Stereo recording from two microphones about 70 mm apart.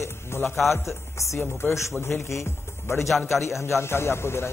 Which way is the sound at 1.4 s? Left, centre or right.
Left.